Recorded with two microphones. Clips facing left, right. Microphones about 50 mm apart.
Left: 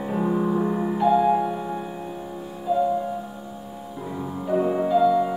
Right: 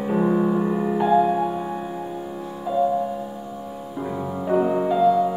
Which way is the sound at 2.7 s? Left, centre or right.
Right.